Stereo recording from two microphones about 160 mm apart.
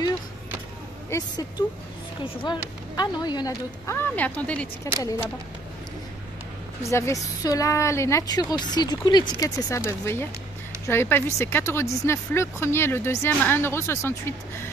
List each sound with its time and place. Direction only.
1.1 s a woman's voice: 15° left (ahead or behind)
2.4 s a woman's voice: 25° left (ahead or behind); by 4.6 s 10° left (ahead or behind)
4.9 s speech: 20° left (ahead or behind)
6.8 s a woman's voice: 20° left (ahead or behind)